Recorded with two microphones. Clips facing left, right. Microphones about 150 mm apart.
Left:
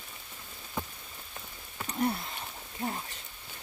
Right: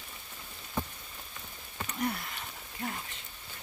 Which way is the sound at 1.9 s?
30° left (ahead or behind).